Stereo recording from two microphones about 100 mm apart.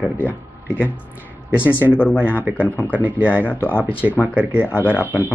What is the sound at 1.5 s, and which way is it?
Speech, 15° right (ahead or behind).